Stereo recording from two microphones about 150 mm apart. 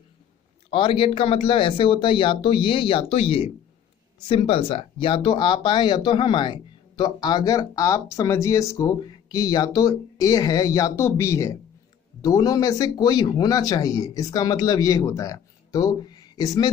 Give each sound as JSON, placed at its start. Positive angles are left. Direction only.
{"t": 0.7, "sound": "speech", "side_deg": 35}